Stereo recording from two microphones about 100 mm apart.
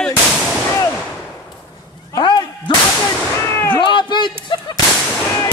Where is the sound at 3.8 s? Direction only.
50° left (ahead or behind).